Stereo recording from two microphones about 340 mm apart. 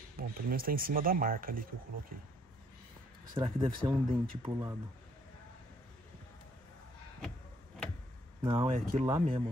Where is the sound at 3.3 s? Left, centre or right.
Centre.